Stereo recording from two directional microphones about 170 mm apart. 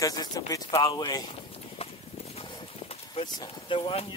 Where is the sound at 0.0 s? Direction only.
20° left (ahead or behind).